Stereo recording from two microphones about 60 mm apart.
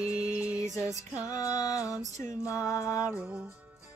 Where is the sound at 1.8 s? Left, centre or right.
Centre.